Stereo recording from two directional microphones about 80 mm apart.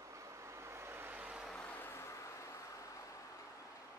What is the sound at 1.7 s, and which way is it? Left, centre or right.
Vehicle, left.